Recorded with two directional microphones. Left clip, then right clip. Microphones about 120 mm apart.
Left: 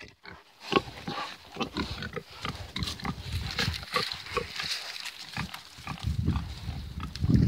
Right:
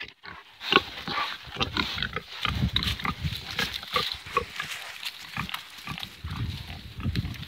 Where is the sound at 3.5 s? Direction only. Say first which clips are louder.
Right 2 dB; 50° left (ahead or behind).